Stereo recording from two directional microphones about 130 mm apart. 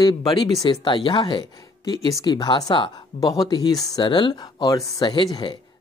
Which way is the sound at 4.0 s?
40° left (ahead or behind).